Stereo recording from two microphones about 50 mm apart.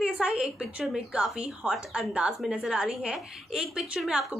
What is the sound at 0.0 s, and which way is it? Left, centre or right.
A woman's voice, centre.